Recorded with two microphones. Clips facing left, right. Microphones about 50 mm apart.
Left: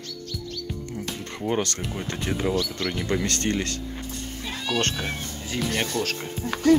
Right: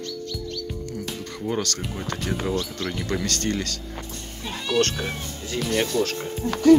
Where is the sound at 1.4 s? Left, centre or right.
Left.